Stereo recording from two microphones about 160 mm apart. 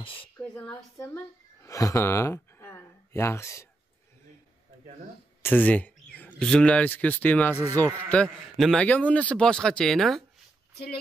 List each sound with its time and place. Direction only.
0.0 s a sound: 35° left (ahead or behind)
0.4 s a woman's voice: 10° left (ahead or behind)
5.4 s a man's voice: 10° left (ahead or behind)